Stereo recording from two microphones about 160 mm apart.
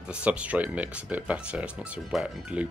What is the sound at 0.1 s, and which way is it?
Speech, 10° right (ahead or behind).